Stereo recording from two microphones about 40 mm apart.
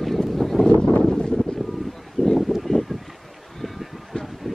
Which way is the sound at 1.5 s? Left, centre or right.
Centre.